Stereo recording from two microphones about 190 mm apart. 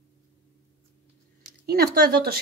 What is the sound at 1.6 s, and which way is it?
Speech, 55° right (ahead or behind).